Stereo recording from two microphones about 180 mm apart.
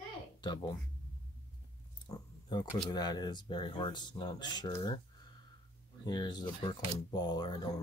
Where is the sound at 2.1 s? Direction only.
20° left (ahead or behind).